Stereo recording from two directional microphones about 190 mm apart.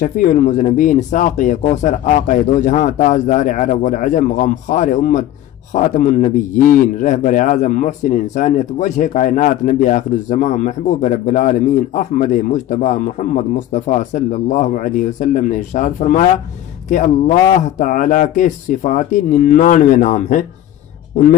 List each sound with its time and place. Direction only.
0.0 s a man's voice: 40° left (ahead or behind)